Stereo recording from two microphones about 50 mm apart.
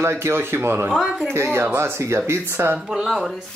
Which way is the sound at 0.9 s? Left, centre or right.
Centre.